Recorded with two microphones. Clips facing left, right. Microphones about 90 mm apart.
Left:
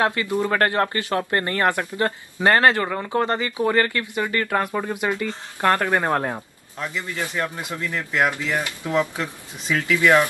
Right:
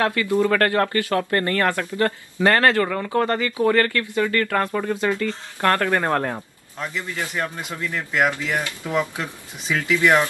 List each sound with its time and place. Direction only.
0.0 s speech: 25° left (ahead or behind)
6.8 s speech: 15° right (ahead or behind)
7.5 s speech: 15° left (ahead or behind)
8.8 s speech: 10° right (ahead or behind)